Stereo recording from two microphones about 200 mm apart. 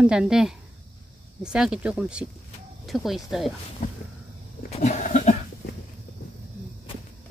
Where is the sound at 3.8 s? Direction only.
35° left (ahead or behind).